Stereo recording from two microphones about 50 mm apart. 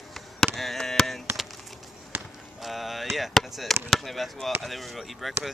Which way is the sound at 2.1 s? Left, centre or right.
Right.